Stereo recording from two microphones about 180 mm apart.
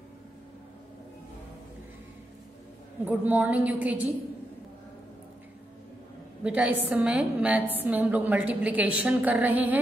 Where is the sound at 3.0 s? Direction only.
10° right (ahead or behind).